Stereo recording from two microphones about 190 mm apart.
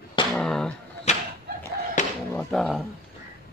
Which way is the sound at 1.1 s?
35° left (ahead or behind).